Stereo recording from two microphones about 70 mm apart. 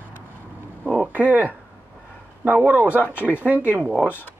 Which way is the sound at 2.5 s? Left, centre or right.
Right.